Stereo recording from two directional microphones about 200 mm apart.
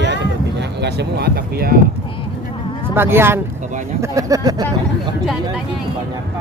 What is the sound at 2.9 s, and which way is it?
Speech, 10° right (ahead or behind).